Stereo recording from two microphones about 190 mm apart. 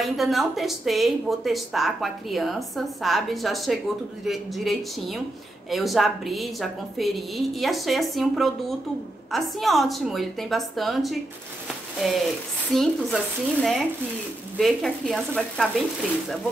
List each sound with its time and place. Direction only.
0.0 s speech: centre (ahead or behind)